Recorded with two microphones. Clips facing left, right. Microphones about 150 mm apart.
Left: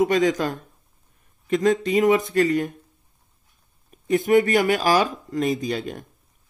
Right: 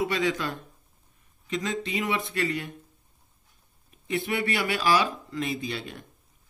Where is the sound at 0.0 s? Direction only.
45° left (ahead or behind).